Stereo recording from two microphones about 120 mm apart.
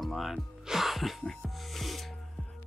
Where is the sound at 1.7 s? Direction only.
Centre (ahead or behind).